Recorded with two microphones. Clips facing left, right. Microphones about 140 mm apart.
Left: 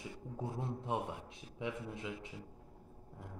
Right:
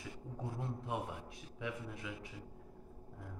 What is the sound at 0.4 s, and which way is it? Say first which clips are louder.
A man's voice: left 3 dB; 20° left (ahead or behind).